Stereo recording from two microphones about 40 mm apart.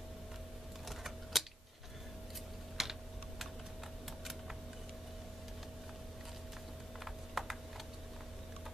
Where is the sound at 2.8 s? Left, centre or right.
Centre.